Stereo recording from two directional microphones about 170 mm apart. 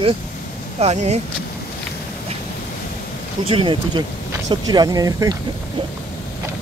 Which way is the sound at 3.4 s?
30° right (ahead or behind).